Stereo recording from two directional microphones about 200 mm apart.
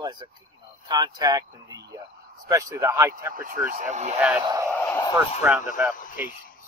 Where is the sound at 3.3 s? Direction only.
45° right (ahead or behind).